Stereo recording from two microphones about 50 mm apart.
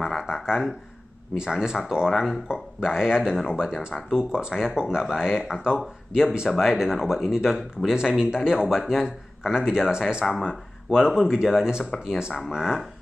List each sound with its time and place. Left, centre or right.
0.0 s a sound: centre
1.3 s speech: centre
2.0 s speech: centre
2.4 s speech: centre